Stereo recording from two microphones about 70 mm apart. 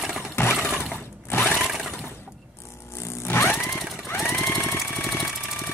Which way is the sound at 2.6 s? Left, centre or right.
Left.